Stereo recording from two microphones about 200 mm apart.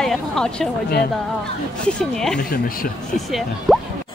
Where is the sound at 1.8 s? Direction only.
Centre (ahead or behind).